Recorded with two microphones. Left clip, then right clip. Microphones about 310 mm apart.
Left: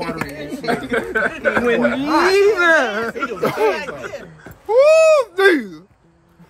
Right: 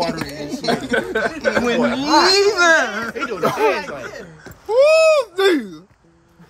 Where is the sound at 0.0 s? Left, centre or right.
Centre.